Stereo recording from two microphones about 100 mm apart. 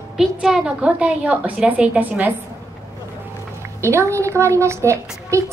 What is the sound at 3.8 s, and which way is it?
A woman's voice, 25° right (ahead or behind).